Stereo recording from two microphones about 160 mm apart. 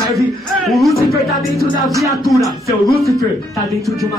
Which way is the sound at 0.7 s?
Centre (ahead or behind).